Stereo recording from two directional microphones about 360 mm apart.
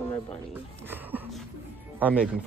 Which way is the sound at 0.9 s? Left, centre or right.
Centre.